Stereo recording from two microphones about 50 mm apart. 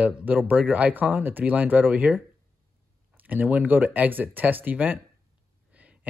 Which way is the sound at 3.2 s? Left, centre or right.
Right.